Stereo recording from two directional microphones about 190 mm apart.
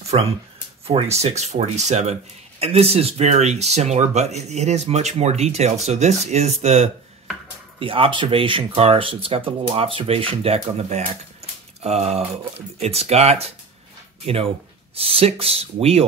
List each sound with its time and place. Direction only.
0.1 s speech: 30° right (ahead or behind)